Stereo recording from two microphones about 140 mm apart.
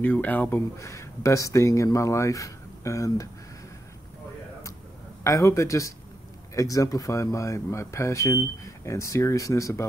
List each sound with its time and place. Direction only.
0.0 s speech: 10° left (ahead or behind)
0.7 s speech: 20° left (ahead or behind)
5.2 s speech: 20° left (ahead or behind)